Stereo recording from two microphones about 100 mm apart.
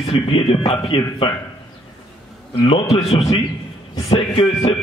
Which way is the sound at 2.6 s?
60° left (ahead or behind).